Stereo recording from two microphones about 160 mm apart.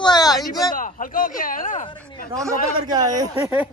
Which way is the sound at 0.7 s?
60° left (ahead or behind).